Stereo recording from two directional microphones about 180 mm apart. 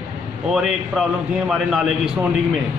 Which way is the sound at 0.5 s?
5° right (ahead or behind).